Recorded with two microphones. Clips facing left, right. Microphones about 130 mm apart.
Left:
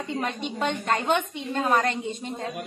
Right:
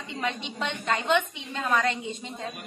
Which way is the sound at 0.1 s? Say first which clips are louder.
Left 1 dB; 50° left (ahead or behind).